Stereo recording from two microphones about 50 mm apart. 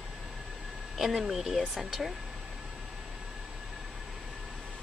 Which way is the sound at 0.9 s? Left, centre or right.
Centre.